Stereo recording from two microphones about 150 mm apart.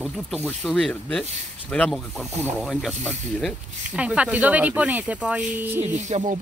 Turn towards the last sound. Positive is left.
turn(degrees=-45)  # may be behind; listen again after turning